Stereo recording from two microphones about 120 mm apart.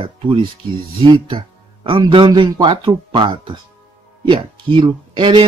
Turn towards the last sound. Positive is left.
turn(degrees=-40)  # may be behind; listen again after turning